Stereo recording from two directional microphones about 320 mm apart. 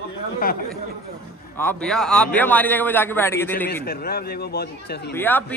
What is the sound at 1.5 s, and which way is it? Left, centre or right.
A man's voice, centre.